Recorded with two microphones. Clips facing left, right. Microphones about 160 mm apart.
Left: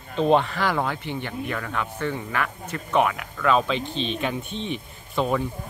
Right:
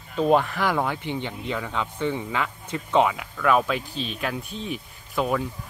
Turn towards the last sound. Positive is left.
turn(degrees=-5)  # may be behind; listen again after turning